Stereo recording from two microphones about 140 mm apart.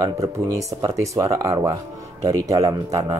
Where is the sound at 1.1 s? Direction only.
20° right (ahead or behind).